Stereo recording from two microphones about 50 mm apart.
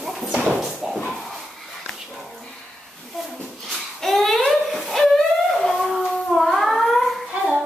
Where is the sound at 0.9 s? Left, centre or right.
Centre.